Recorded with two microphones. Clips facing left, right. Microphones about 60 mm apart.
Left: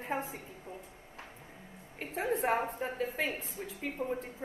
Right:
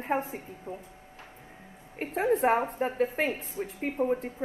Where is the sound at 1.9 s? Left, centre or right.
Right.